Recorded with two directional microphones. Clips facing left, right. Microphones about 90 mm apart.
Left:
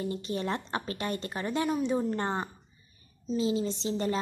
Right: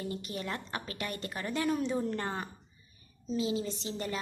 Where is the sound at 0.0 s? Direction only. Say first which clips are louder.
Left 5 dB; 30° left (ahead or behind).